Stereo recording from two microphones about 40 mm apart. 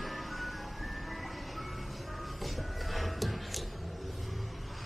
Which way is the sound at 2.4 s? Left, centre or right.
Centre.